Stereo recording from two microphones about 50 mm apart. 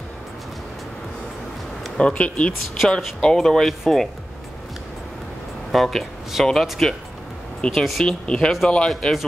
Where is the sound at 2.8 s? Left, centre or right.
Centre.